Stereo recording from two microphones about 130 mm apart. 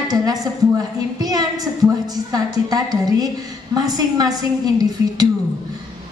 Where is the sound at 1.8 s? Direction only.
30° right (ahead or behind).